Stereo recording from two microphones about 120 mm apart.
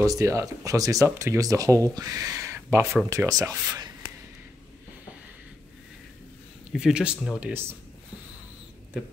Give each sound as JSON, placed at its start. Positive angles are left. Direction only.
{"t": 0.0, "sound": "speech", "side_deg": -30}
{"t": 6.7, "sound": "speech", "side_deg": -5}